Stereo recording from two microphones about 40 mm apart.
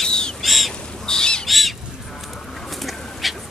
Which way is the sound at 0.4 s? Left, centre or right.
Centre.